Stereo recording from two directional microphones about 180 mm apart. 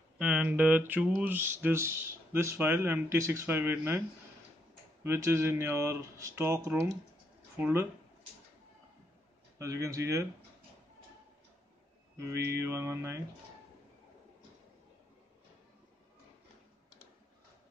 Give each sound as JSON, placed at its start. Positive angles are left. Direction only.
{"t": 0.2, "sound": "speech", "side_deg": -5}
{"t": 5.0, "sound": "speech", "side_deg": -15}
{"t": 9.6, "sound": "speech", "side_deg": -15}
{"t": 12.4, "sound": "speech", "side_deg": -15}